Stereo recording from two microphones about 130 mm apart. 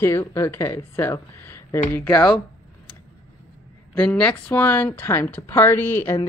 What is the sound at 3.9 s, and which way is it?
Speech, 10° left (ahead or behind).